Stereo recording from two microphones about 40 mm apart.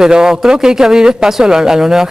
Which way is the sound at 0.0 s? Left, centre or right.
Centre.